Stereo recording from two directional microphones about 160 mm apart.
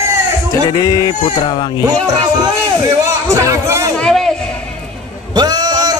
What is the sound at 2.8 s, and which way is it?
A man's voice, 20° right (ahead or behind).